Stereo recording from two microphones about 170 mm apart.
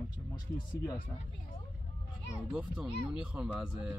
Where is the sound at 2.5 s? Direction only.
5° right (ahead or behind).